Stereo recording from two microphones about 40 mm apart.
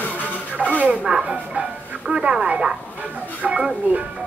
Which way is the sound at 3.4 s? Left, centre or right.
Centre.